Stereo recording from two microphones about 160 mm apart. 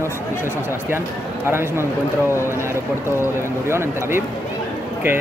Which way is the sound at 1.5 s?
15° right (ahead or behind).